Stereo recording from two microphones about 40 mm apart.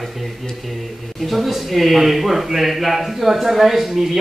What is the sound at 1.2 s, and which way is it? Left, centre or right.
Speech, centre.